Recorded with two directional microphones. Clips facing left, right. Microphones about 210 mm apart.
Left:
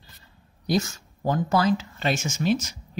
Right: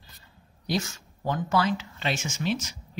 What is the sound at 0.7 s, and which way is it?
Speech, 45° left (ahead or behind).